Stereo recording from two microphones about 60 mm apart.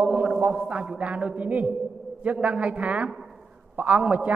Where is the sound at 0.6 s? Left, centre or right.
Right.